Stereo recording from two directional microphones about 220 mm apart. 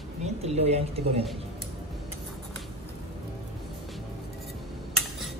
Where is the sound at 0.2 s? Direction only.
30° right (ahead or behind).